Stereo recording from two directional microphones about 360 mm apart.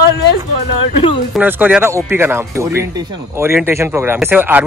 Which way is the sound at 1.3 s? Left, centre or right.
Centre.